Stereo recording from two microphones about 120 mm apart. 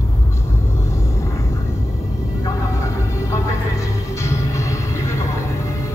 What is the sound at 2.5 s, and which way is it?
Music, 25° left (ahead or behind).